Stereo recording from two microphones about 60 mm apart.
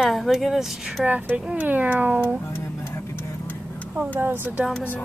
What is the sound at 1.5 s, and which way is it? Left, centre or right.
Speech, right.